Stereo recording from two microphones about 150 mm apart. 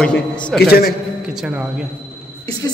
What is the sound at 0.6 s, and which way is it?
Speech, 90° left.